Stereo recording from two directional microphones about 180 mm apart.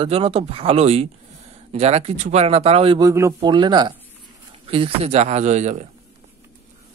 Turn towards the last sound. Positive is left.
turn(degrees=-40)  # may be behind; listen again after turning